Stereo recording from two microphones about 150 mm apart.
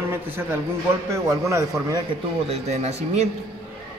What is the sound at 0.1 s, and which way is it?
A man's voice, 15° right (ahead or behind).